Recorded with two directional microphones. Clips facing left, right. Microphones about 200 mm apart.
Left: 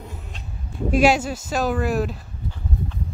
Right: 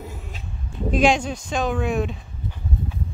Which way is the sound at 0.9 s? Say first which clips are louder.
Left 1 dB; 5° left (ahead or behind).